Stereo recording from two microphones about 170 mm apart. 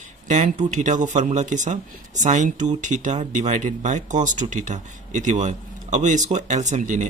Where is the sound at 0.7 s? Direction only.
45° right (ahead or behind).